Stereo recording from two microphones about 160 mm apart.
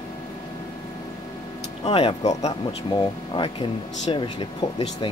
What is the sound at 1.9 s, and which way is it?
Speech, 35° left (ahead or behind).